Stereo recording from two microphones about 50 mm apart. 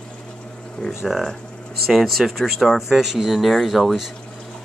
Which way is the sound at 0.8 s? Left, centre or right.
Centre.